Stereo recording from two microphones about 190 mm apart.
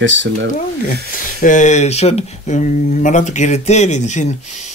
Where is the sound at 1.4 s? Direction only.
40° left (ahead or behind).